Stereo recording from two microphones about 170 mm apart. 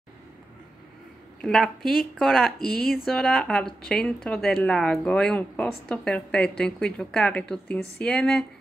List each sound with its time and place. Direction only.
1.4 s speech: centre (ahead or behind)
2.6 s speech: 60° left (ahead or behind)
3.1 s speech: 5° left (ahead or behind)